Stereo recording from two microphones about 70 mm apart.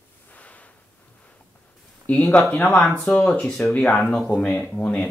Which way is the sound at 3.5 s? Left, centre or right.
Centre.